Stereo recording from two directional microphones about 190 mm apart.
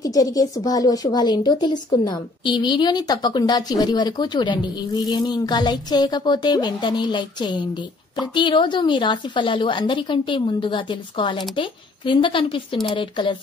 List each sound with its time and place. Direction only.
0.0 s a woman's voice: 20° left (ahead or behind)